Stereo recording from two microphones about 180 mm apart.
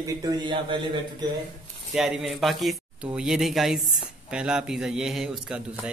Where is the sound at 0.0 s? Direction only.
25° right (ahead or behind).